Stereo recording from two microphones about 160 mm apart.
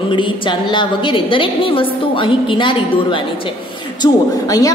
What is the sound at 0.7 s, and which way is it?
A woman's voice, 30° left (ahead or behind).